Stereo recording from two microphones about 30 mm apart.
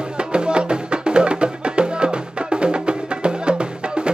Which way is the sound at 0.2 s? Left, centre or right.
Right.